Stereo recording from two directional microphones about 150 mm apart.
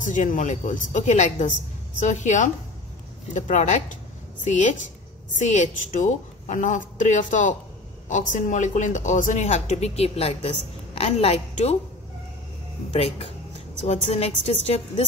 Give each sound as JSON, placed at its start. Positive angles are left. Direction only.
{"t": 0.0, "sound": "a woman's voice", "side_deg": 55}
{"t": 12.9, "sound": "speech", "side_deg": 40}